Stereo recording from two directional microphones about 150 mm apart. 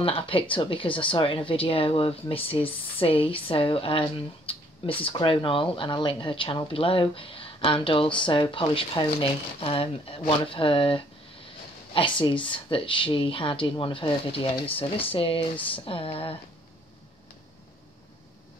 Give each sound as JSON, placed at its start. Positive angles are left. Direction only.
{"t": 0.0, "sound": "speech", "side_deg": 35}
{"t": 15.5, "sound": "speech", "side_deg": 10}
{"t": 15.8, "sound": "speech", "side_deg": 40}